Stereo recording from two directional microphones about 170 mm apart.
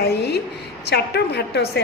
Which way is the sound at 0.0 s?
70° left (ahead or behind).